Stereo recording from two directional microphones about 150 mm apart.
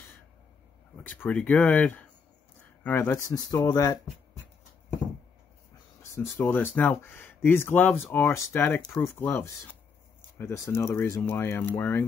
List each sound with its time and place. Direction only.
1.0 s speech: 10° left (ahead or behind)
6.4 s speech: 10° left (ahead or behind)